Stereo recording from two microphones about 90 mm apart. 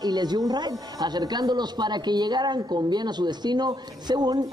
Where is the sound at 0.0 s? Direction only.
50° right (ahead or behind).